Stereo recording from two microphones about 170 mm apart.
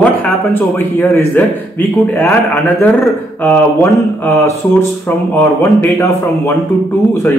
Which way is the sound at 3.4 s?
15° left (ahead or behind).